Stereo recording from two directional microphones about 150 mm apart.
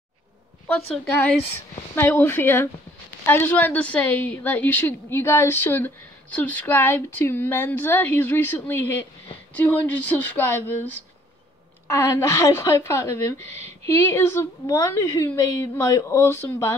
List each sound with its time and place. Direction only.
0.7 s a woman's voice: 10° left (ahead or behind)
12.2 s a woman's voice: 20° left (ahead or behind)
14.1 s a woman's voice: 15° left (ahead or behind)